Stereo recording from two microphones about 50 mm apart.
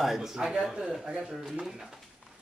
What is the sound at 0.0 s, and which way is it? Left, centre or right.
Speech, centre.